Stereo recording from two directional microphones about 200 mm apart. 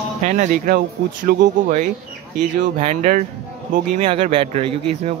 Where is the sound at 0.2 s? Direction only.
40° right (ahead or behind).